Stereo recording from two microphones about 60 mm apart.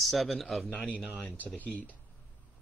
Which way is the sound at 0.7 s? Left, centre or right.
Left.